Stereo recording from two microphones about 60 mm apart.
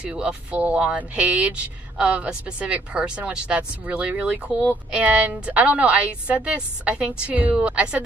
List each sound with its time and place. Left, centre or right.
0.0 s speech: centre